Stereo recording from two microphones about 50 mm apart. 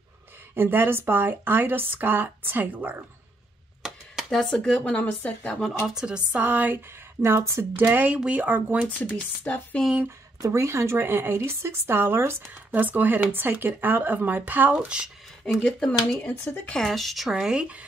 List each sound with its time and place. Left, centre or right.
0.6 s speech: right
3.8 s a sound: centre
4.3 s speech: centre
4.8 s speech: left
5.9 s speech: centre
7.2 s speech: right
8.3 s speech: right
8.8 s speech: left
10.0 s speech: right
12.7 s speech: right
14.9 s speech: right
15.6 s speech: centre
16.8 s speech: centre
17.3 s speech: centre